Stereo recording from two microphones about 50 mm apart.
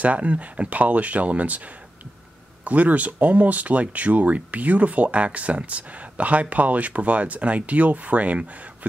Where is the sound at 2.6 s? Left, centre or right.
Right.